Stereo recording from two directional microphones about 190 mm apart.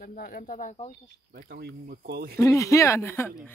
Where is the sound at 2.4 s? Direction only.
15° left (ahead or behind).